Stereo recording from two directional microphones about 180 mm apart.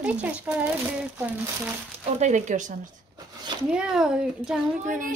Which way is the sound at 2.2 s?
45° right (ahead or behind).